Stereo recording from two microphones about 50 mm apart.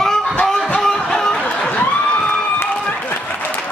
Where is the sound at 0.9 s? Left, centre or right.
Centre.